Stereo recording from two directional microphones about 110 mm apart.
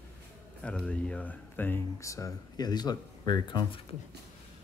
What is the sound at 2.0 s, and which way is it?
Speech, 30° left (ahead or behind).